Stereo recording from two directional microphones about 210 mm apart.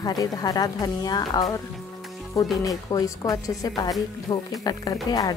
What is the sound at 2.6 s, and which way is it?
A woman's voice, 15° left (ahead or behind).